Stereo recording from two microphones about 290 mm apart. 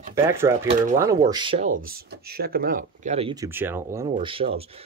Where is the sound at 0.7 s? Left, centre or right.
Right.